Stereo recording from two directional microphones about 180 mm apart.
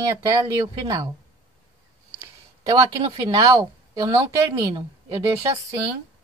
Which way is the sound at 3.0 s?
25° right (ahead or behind).